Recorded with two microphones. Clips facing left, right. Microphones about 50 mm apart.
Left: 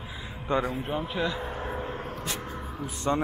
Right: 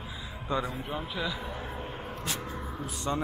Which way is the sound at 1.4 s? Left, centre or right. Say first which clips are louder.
Left 4 dB; left.